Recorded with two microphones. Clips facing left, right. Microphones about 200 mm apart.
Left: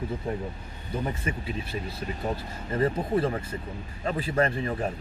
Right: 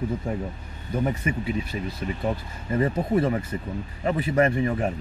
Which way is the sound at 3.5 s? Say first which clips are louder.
Right 5 dB; 20° right (ahead or behind).